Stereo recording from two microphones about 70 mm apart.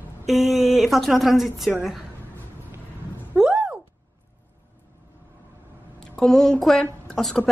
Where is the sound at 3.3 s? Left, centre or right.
Centre.